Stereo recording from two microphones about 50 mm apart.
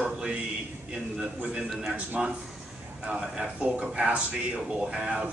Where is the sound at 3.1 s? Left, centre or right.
Centre.